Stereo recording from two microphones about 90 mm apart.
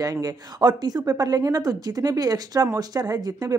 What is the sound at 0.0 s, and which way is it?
Speech, 45° right (ahead or behind).